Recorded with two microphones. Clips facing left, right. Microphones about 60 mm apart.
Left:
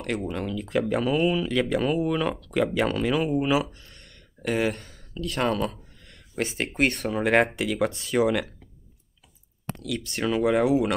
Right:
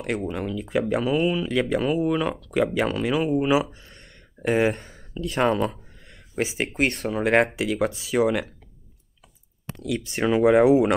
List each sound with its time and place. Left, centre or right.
0.0 s speech: centre
3.7 s a sound: right
6.0 s speech: centre
9.9 s speech: centre